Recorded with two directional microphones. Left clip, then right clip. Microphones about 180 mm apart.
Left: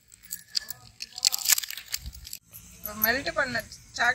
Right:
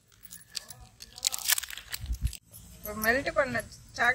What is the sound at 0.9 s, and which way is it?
Crunch, 60° right (ahead or behind).